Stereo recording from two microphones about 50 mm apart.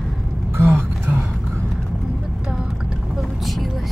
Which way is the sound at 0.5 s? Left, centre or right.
Right.